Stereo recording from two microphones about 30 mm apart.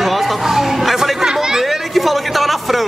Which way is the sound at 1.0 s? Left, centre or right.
Centre.